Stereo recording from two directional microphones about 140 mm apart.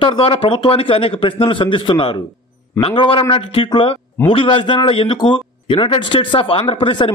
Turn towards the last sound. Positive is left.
turn(degrees=40)  # may be behind; listen again after turning